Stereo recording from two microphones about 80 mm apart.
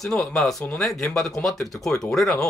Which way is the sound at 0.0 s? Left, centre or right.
Centre.